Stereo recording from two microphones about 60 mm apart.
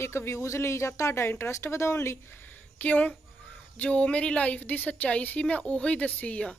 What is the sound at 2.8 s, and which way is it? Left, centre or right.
A woman's voice, left.